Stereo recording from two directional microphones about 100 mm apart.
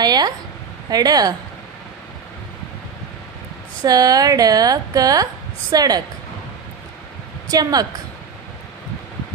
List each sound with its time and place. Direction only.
0.0 s speech: 45° right (ahead or behind)
3.8 s speech: 40° right (ahead or behind)
7.4 s speech: 40° right (ahead or behind)